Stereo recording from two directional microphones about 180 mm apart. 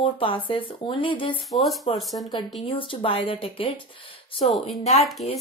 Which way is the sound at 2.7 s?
30° left (ahead or behind).